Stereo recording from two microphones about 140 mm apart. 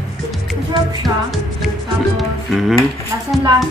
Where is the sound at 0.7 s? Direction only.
30° right (ahead or behind).